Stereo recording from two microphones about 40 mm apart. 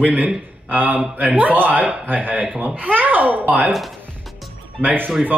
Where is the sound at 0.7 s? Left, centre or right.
Right.